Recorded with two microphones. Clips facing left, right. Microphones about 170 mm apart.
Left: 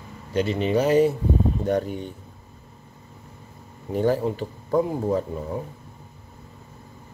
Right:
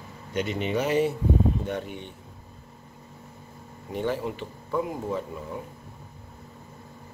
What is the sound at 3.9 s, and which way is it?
Speech, 40° left (ahead or behind).